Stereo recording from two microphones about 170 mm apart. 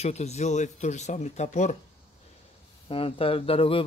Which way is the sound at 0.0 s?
40° left (ahead or behind).